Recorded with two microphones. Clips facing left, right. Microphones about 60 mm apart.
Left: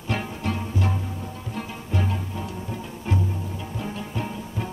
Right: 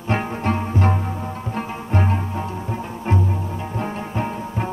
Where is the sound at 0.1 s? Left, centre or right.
Right.